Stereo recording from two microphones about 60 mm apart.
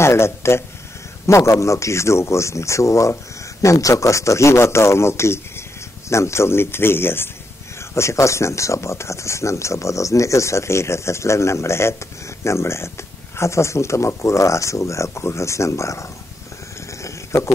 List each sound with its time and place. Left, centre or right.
0.0 s speech: left
3.6 s speech: left
7.9 s speech: left
17.0 s a sound: left